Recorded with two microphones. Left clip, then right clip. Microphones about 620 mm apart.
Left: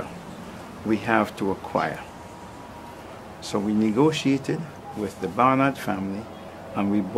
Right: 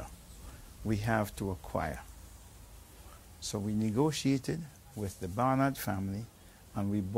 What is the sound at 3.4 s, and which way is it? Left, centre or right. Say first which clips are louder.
Speech: left 12 dB; right.